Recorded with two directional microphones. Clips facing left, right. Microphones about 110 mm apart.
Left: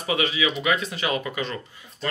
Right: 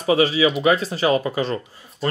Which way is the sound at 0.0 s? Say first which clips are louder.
Right 7 dB; 35° right (ahead or behind).